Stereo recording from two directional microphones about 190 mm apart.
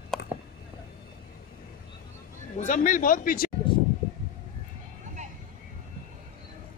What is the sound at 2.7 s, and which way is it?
Speech, 45° left (ahead or behind).